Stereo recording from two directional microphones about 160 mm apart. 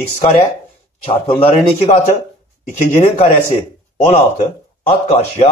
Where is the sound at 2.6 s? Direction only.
55° left (ahead or behind).